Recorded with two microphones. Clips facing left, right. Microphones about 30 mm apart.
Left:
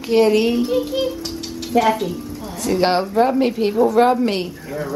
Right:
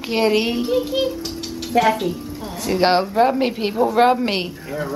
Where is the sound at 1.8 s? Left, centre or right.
Centre.